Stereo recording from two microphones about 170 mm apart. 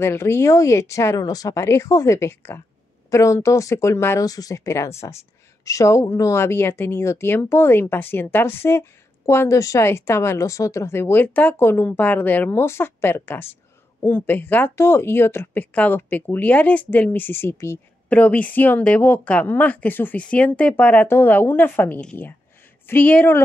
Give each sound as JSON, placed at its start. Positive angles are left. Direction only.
{"t": 0.0, "sound": "speech", "side_deg": 15}